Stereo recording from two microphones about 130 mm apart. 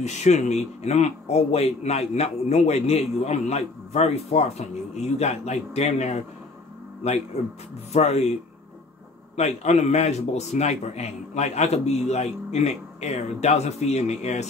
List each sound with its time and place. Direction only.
0.0 s a man's voice: 60° left (ahead or behind)
9.4 s a man's voice: 55° left (ahead or behind)